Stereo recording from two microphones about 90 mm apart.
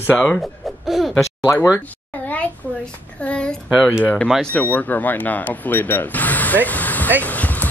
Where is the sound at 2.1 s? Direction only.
15° left (ahead or behind).